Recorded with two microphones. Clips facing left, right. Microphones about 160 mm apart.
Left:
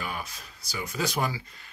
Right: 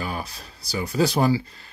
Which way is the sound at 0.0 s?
35° right (ahead or behind).